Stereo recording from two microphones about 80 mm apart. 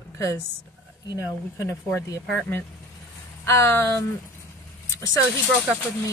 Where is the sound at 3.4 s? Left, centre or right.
Left.